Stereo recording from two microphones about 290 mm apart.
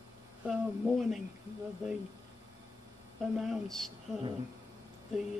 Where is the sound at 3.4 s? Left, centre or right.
Centre.